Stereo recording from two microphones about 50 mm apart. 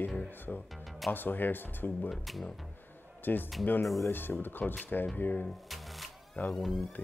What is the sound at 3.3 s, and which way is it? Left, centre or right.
Speech, left.